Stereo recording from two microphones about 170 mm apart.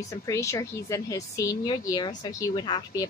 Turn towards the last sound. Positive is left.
turn(degrees=25)  # may be behind; listen again after turning